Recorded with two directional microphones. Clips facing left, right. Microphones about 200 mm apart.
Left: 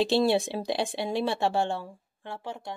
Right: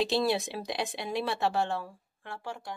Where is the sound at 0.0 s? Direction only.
30° left (ahead or behind).